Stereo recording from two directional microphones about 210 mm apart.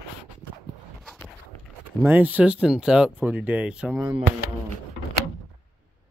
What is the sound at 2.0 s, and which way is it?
Speech, 10° right (ahead or behind).